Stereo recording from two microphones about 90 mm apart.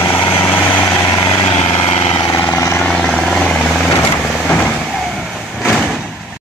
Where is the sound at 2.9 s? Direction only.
5° left (ahead or behind).